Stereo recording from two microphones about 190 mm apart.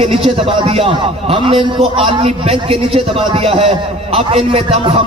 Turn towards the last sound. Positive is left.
turn(degrees=-30)  # may be behind; listen again after turning